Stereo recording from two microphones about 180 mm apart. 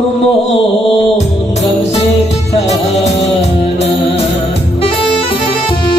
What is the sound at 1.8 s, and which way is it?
Music, 35° left (ahead or behind).